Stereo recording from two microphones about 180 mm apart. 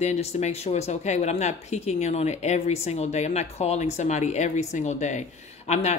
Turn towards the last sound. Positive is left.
turn(degrees=35)  # may be behind; listen again after turning